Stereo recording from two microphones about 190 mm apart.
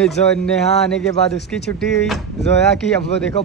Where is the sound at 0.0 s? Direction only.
5° left (ahead or behind).